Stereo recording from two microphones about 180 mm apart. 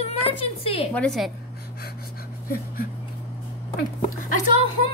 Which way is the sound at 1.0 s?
Centre (ahead or behind).